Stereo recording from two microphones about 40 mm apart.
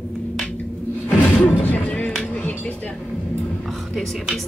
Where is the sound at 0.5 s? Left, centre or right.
Left.